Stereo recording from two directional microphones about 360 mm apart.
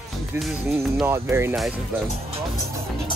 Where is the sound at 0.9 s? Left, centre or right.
Centre.